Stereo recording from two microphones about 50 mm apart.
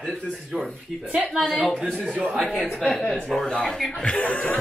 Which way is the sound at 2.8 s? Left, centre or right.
Centre.